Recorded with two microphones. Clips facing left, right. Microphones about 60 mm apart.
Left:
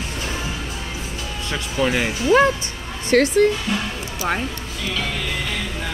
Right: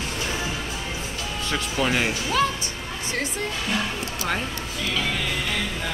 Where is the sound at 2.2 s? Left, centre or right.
Left.